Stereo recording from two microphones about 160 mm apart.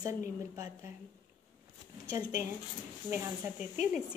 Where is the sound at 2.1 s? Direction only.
20° right (ahead or behind).